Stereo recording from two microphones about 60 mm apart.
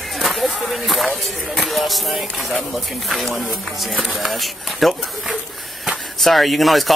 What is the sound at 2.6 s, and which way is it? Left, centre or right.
Speech, centre.